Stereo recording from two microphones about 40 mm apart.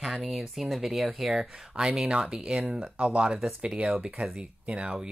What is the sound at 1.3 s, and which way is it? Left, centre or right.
Speech, centre.